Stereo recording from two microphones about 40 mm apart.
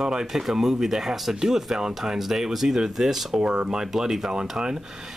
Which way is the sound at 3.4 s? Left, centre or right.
Right.